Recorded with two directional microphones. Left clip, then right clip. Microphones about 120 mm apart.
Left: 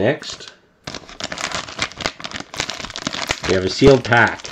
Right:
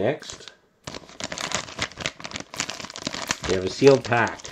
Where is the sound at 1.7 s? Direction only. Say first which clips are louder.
Left 6 dB; 5° right (ahead or behind).